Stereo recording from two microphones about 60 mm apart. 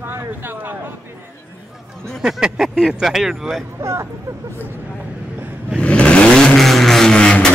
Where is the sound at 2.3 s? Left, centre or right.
Centre.